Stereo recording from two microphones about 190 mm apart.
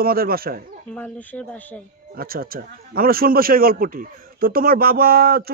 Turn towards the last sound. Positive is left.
turn(degrees=-55)  # may be behind; listen again after turning